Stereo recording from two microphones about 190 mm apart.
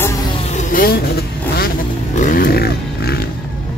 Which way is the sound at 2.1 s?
45° left (ahead or behind).